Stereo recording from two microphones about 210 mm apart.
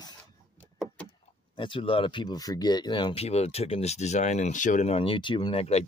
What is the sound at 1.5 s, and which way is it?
Speech, 25° left (ahead or behind).